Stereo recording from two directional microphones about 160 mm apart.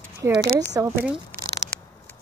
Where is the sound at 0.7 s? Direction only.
10° right (ahead or behind).